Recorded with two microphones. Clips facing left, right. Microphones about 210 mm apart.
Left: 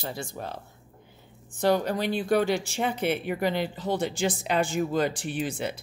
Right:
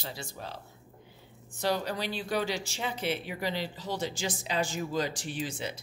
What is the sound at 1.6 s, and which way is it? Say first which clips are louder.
A woman's voice: left 7 dB; 50° left (ahead or behind).